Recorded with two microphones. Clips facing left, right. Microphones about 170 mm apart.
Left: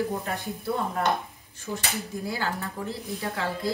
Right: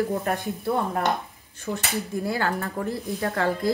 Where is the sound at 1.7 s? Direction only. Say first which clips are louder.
Right 3 dB; 75° right (ahead or behind).